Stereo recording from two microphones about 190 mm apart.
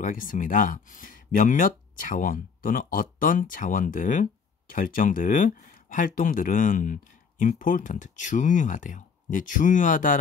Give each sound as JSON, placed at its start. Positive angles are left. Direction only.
{"t": 0.0, "sound": "speech", "side_deg": 45}